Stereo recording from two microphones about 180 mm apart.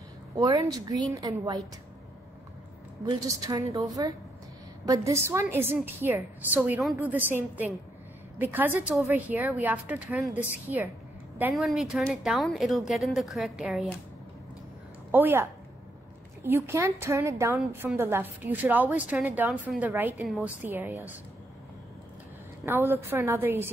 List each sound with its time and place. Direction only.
0.4 s a woman's voice: 20° right (ahead or behind)
3.3 s a woman's voice: 20° right (ahead or behind); by 13.9 s centre (ahead or behind)
15.0 s a woman's voice: 10° right (ahead or behind)
16.4 s a woman's voice: 15° right (ahead or behind)
20.2 s speech: centre (ahead or behind)
20.6 s a woman's voice: 10° right (ahead or behind)
22.7 s a woman's voice: 15° right (ahead or behind)